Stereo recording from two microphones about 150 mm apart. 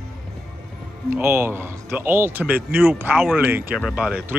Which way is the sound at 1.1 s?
15° right (ahead or behind).